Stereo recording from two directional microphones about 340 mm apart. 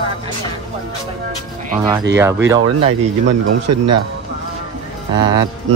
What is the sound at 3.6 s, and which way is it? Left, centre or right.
Speech, right.